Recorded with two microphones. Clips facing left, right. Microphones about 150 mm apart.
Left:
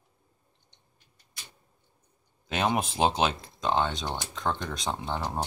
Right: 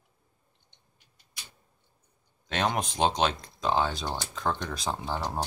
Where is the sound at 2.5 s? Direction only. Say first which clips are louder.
Left 1 dB; 5° left (ahead or behind).